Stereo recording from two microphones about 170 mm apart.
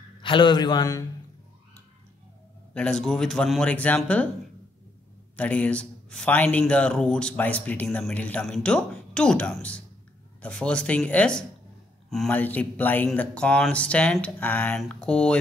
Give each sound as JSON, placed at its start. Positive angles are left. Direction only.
{"t": 0.2, "sound": "a man's voice", "side_deg": 30}
{"t": 2.7, "sound": "speech", "side_deg": 5}
{"t": 5.3, "sound": "a man's voice", "side_deg": 10}